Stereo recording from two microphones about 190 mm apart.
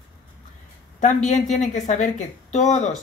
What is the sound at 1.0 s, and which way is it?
A woman's voice, 40° left (ahead or behind).